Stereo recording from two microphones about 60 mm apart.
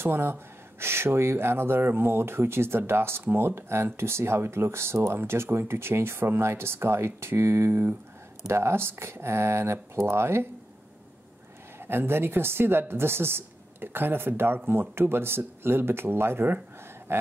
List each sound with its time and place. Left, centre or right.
0.0 s speech: right
11.8 s speech: right